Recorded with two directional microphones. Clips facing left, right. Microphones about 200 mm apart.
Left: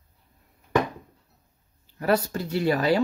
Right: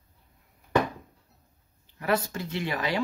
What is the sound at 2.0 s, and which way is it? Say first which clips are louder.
Speech: left 4 dB; 35° left (ahead or behind).